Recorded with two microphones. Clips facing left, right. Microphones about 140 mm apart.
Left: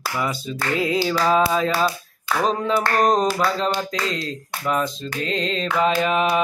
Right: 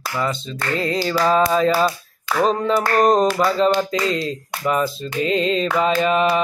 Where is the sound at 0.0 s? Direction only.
10° left (ahead or behind).